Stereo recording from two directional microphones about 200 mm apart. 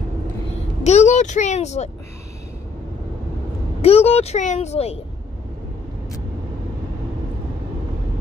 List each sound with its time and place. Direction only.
0.8 s speech: 35° left (ahead or behind)
3.8 s speech: 30° left (ahead or behind)